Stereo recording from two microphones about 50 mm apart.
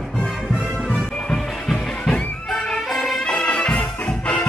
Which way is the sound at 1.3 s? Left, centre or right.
Centre.